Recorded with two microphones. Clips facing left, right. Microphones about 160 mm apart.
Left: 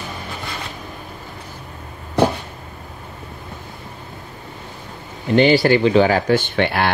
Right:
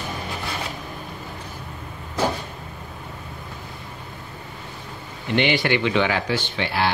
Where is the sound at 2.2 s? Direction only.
65° left (ahead or behind).